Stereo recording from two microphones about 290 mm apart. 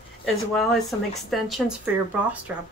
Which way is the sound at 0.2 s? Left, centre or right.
Centre.